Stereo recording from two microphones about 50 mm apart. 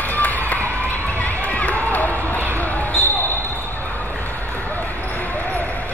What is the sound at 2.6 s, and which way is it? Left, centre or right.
Basketball bounce, left.